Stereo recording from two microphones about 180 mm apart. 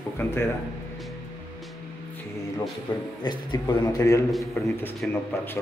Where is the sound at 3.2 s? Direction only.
20° left (ahead or behind).